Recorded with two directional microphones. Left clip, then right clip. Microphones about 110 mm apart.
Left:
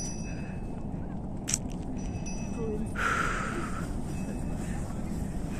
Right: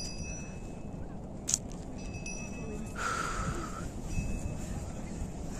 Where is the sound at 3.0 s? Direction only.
40° right (ahead or behind).